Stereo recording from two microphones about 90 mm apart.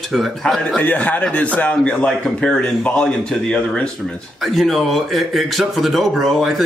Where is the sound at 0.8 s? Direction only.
20° left (ahead or behind).